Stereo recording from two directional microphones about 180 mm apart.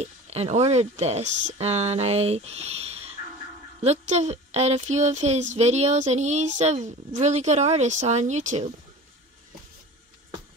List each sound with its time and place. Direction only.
0.0 s speech: 35° right (ahead or behind)